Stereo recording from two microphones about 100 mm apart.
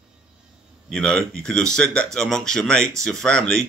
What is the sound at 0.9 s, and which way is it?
Speech, 10° left (ahead or behind).